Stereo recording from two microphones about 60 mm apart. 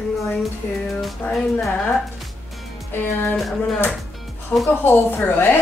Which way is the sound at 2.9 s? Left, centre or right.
Left.